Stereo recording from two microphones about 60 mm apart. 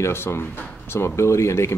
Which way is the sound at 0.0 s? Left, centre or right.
Left.